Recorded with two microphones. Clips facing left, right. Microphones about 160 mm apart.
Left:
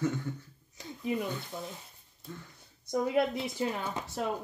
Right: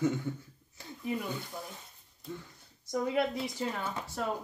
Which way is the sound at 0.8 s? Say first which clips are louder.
Left 3 dB; 20° left (ahead or behind).